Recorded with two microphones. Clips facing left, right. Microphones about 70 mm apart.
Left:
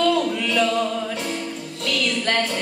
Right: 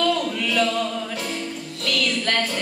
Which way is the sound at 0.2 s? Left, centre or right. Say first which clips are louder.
Left 1 dB; centre.